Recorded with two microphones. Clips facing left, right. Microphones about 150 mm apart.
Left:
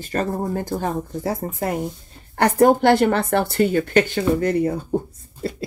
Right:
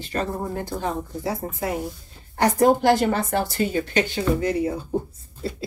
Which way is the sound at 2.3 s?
60° left (ahead or behind).